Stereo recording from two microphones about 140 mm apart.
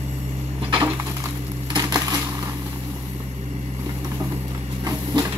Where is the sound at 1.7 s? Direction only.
25° right (ahead or behind).